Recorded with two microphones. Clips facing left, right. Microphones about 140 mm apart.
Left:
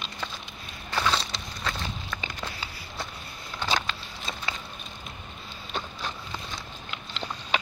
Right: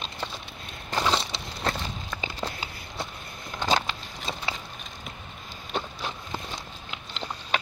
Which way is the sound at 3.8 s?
20° right (ahead or behind).